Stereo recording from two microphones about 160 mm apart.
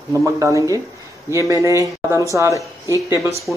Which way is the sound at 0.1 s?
20° right (ahead or behind).